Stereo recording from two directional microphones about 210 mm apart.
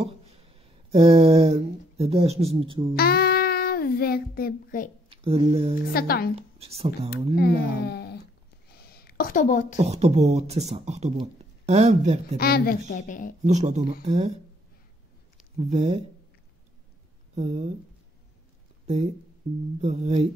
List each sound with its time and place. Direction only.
0.0 s speech: 30° right (ahead or behind)
3.0 s a child's voice: 45° left (ahead or behind)
5.1 s speech: 25° right (ahead or behind)
5.9 s a woman's voice: 45° left (ahead or behind)
6.3 s a woman's voice: 30° right (ahead or behind)
7.3 s a woman's voice: 50° left (ahead or behind)
8.6 s a sound: 45° left (ahead or behind)
9.8 s speech: 30° right (ahead or behind)
12.4 s a woman's voice: 45° left (ahead or behind)
13.4 s speech: 35° right (ahead or behind)
15.5 s speech: 30° right (ahead or behind)
17.4 s speech: 30° right (ahead or behind)
19.8 s speech: 30° right (ahead or behind)